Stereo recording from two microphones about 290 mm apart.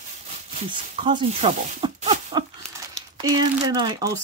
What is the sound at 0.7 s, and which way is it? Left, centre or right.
Speech, centre.